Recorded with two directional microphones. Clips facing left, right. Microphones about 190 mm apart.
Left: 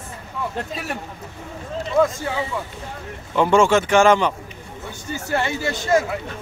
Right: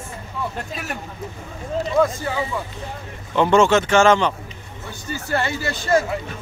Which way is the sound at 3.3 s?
10° left (ahead or behind).